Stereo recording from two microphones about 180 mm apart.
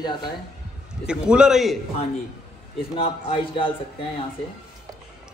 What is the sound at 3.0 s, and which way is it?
Speech, 30° left (ahead or behind).